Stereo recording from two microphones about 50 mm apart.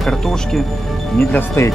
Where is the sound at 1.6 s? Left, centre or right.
Left.